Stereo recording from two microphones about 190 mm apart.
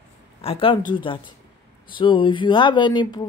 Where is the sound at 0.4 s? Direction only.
30° left (ahead or behind).